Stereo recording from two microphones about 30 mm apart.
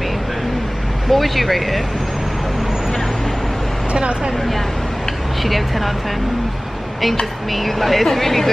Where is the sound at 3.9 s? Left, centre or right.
Right.